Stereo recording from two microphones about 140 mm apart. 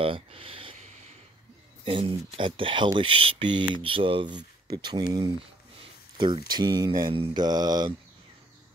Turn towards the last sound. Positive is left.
turn(degrees=-30)  # may be behind; listen again after turning